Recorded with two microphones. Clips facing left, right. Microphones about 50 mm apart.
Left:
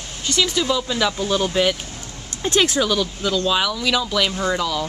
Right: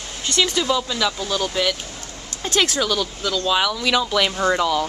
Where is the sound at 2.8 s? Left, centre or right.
Centre.